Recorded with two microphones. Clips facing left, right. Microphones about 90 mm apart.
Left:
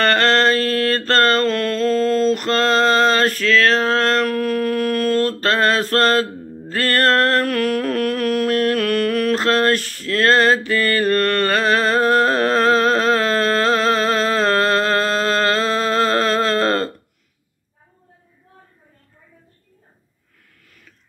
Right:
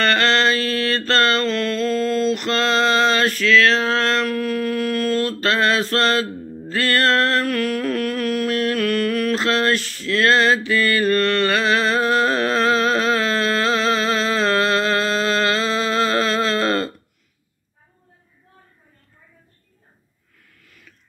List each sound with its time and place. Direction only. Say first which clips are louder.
0.0 s mantra: left 2 dB; 50° left (ahead or behind)
5.4 s a sound: left 1 dB; 45° left (ahead or behind)
6.7 s mantra: left 1 dB; 45° left (ahead or behind)